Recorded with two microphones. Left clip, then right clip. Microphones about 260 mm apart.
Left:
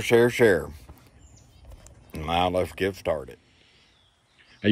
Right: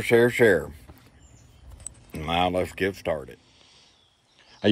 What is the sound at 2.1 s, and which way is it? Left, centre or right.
A man's voice, centre.